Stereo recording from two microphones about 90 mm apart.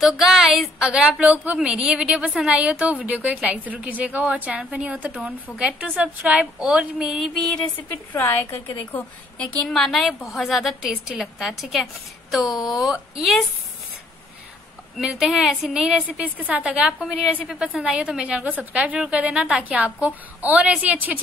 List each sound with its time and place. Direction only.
0.0 s a woman's voice: centre (ahead or behind)
7.9 s a woman's voice: 20° left (ahead or behind)
9.6 s a woman's voice: 5° left (ahead or behind)
15.0 s a woman's voice: 5° right (ahead or behind)